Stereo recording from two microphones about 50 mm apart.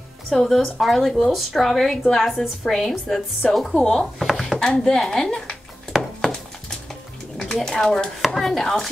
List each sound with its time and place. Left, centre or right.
0.3 s a woman's voice: centre
5.9 s a sound: centre
7.5 s a woman's voice: centre